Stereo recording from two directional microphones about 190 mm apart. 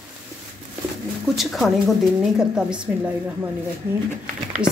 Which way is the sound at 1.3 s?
Centre (ahead or behind).